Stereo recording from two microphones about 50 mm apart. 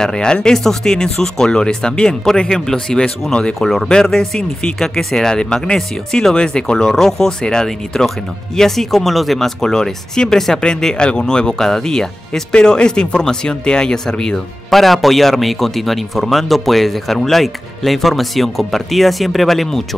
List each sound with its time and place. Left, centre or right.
0.0 s speech: centre
14.7 s speech: centre